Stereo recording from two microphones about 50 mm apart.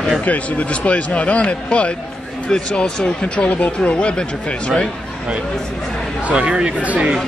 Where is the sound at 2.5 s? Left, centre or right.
Centre.